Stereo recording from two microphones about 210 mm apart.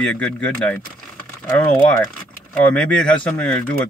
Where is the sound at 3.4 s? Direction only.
5° left (ahead or behind).